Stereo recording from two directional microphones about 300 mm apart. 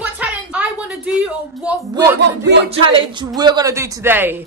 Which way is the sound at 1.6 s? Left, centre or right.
Centre.